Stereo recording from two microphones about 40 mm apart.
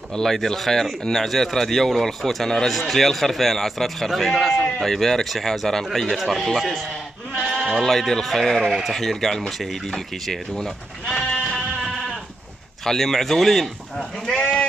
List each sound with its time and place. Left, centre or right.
0.1 s a man's voice: centre
7.3 s sheep: centre
7.8 s a man's voice: centre
11.3 s sheep: centre
12.8 s speech: centre
14.3 s sheep: left